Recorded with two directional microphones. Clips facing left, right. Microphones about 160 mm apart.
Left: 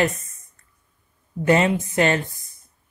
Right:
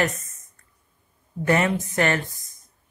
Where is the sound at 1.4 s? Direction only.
20° left (ahead or behind).